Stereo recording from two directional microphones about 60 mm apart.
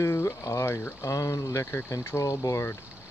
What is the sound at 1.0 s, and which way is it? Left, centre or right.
Speech, left.